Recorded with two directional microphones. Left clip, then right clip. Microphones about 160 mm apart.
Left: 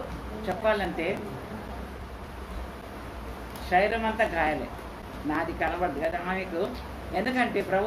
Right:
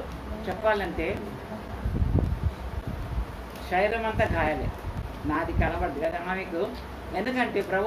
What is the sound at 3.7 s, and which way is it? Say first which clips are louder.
Speech: left 1 dB; 10° left (ahead or behind).